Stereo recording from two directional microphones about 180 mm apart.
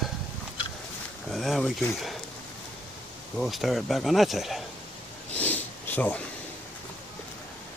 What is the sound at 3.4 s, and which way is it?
Speech, centre (ahead or behind).